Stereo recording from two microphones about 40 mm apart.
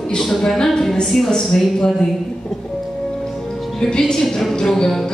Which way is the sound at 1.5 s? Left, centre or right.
Centre.